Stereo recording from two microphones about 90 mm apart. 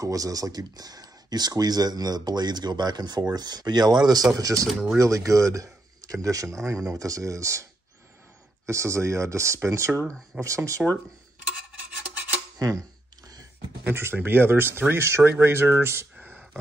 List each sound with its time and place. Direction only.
0.0 s speech: 40° right (ahead or behind)
8.6 s speech: 35° right (ahead or behind)
12.5 s speech: 40° right (ahead or behind)
13.8 s speech: 25° right (ahead or behind)